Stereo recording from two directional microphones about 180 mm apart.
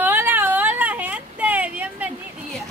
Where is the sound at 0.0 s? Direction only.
10° right (ahead or behind).